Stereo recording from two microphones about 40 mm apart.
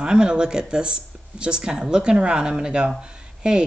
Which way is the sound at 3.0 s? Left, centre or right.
Right.